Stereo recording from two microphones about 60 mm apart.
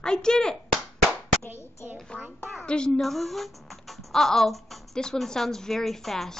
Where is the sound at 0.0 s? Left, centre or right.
Centre.